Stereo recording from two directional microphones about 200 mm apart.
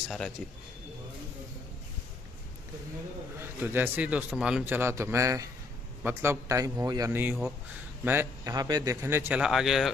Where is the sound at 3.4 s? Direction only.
10° right (ahead or behind).